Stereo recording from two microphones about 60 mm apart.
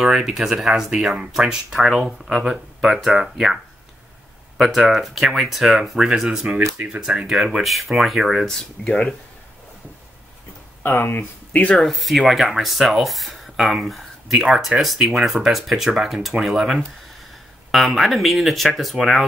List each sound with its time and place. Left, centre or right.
0.0 s speech: centre
4.6 s speech: centre
8.5 s speech: centre
10.8 s speech: left
11.7 s speech: centre